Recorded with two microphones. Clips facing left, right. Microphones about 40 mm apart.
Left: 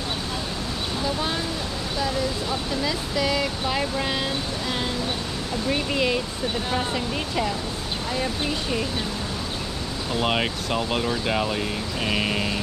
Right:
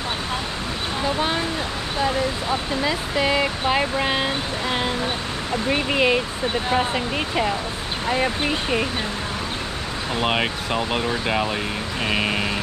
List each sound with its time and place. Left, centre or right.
1.0 s a sound: right
2.8 s speech: right
10.2 s speech: centre